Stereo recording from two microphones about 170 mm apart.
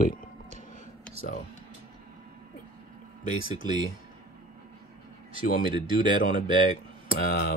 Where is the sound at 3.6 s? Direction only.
25° right (ahead or behind).